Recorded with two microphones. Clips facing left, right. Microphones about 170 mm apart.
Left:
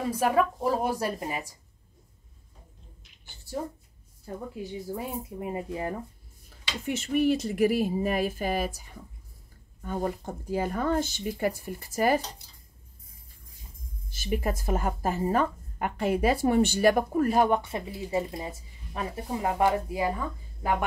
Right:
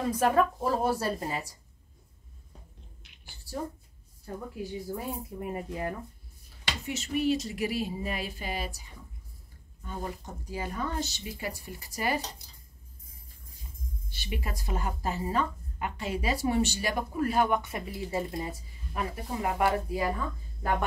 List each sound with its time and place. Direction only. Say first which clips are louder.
0.1 s speech: even; 10° left (ahead or behind)
4.9 s speech: left 2 dB; 20° left (ahead or behind)
6.9 s a woman's voice: left 4 dB; 55° left (ahead or behind)
14.1 s a woman's voice: left 8 dB; 45° left (ahead or behind); by 20.7 s 20° left (ahead or behind)